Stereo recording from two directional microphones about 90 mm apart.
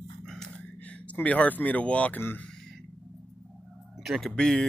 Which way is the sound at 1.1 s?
15° left (ahead or behind).